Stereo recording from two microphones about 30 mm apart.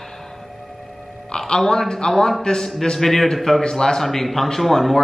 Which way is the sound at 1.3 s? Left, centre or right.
Left.